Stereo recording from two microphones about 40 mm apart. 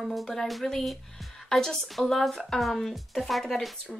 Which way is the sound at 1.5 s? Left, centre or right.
Centre.